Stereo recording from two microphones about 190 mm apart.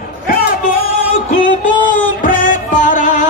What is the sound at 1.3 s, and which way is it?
Music, 45° left (ahead or behind).